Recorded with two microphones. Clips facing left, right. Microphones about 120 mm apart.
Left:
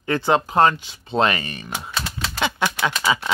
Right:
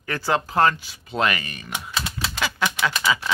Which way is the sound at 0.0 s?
25° left (ahead or behind).